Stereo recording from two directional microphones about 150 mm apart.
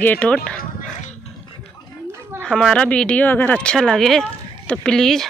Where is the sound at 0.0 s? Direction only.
10° left (ahead or behind).